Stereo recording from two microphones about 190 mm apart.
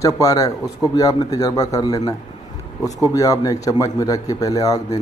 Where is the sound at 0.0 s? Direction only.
15° left (ahead or behind).